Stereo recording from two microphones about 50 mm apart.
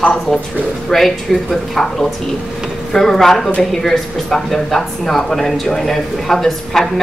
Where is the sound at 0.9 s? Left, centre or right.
Centre.